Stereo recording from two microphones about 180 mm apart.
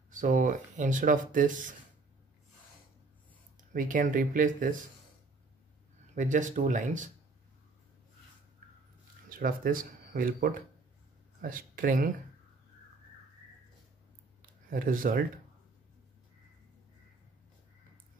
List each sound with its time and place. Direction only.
0.1 s speech: 45° right (ahead or behind)
3.7 s speech: 45° right (ahead or behind)
6.1 s speech: 45° right (ahead or behind)
9.3 s speech: 50° right (ahead or behind)
14.4 s speech: 50° right (ahead or behind)